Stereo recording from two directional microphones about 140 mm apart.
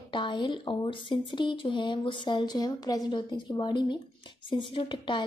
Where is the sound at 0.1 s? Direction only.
35° left (ahead or behind).